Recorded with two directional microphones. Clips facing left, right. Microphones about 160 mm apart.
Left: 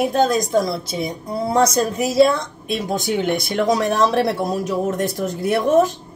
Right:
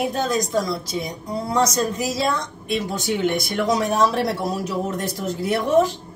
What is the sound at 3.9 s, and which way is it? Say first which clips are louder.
Speech: left 2 dB; 55° left (ahead or behind).